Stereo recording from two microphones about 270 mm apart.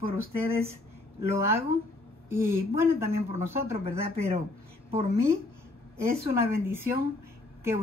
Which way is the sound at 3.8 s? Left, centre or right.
Right.